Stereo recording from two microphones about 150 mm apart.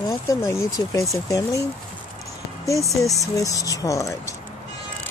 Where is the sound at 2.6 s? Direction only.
20° left (ahead or behind).